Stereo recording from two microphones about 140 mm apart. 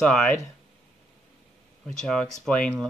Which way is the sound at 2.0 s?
5° left (ahead or behind).